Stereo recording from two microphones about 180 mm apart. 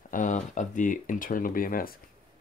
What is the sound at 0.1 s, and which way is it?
Speech, 45° left (ahead or behind).